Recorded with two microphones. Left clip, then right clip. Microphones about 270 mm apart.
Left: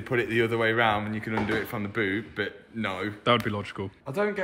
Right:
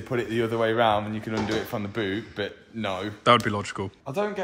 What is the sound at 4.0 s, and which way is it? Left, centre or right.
Speech, centre.